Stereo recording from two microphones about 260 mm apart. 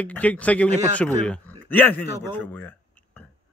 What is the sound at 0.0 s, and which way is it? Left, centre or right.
Speech, centre.